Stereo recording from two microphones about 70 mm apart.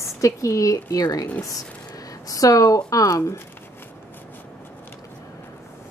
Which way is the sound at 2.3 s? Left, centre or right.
Left.